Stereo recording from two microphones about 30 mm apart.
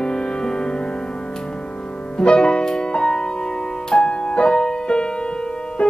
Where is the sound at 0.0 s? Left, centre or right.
Left.